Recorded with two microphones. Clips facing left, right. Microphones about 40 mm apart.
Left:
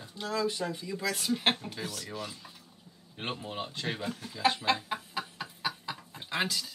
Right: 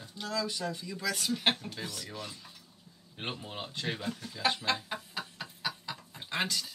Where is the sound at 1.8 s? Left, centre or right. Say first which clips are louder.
Left 2 dB; centre.